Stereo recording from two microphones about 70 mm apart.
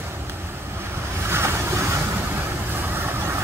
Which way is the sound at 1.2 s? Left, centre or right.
Right.